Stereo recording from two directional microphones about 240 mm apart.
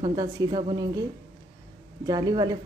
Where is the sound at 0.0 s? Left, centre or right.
Centre.